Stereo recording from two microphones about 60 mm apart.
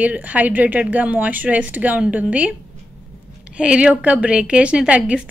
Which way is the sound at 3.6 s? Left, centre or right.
Centre.